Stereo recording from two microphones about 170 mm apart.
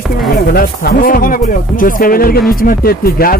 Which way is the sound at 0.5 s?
60° left (ahead or behind).